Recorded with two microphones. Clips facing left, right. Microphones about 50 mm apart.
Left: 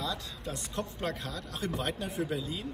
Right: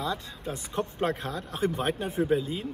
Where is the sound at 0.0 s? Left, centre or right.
Right.